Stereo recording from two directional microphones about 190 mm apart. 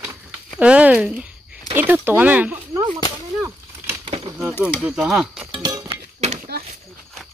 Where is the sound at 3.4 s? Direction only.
10° right (ahead or behind).